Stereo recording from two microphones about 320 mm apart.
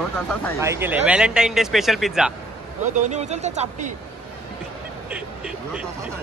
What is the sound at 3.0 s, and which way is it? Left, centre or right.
Speech, right.